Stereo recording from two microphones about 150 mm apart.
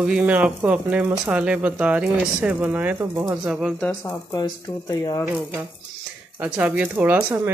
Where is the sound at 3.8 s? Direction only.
10° left (ahead or behind).